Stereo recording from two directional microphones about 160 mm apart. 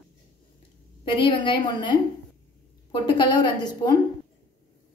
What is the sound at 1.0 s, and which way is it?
A woman's voice, 30° left (ahead or behind).